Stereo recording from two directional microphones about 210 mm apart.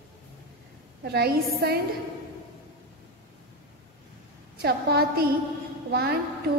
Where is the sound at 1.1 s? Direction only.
50° right (ahead or behind).